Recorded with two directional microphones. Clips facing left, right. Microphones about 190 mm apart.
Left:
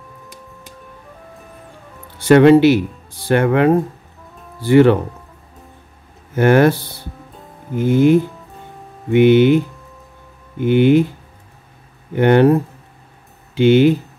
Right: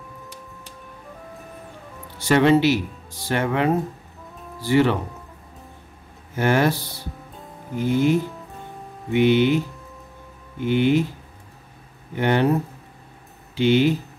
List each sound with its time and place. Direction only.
2.1 s speech: 55° left (ahead or behind)
6.3 s speech: 55° left (ahead or behind)
7.8 s speech: 55° left (ahead or behind)
10.6 s speech: 55° left (ahead or behind)
12.2 s speech: 55° left (ahead or behind)
13.6 s speech: 55° left (ahead or behind)